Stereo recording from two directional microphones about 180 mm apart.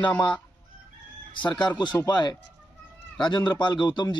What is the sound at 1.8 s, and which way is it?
A man's voice, 25° left (ahead or behind).